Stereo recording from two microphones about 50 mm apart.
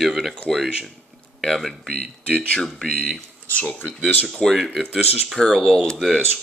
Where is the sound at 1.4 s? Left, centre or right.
Centre.